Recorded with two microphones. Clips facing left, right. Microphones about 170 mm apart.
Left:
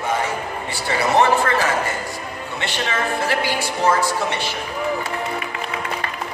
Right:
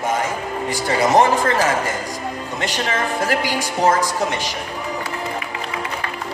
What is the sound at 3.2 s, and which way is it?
Speech, 45° right (ahead or behind).